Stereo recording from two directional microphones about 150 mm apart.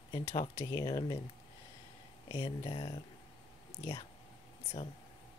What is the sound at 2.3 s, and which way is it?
Speech, 35° left (ahead or behind).